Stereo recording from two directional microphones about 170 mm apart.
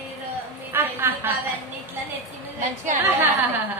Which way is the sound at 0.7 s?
10° right (ahead or behind).